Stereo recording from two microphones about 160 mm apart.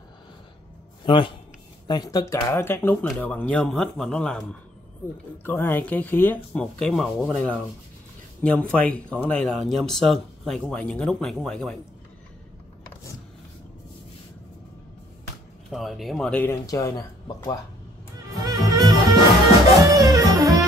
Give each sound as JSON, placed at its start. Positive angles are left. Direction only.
{"t": 1.0, "sound": "speech", "side_deg": 30}
{"t": 15.7, "sound": "speech", "side_deg": 0}
{"t": 16.6, "sound": "speech", "side_deg": 20}
{"t": 18.3, "sound": "music", "side_deg": -20}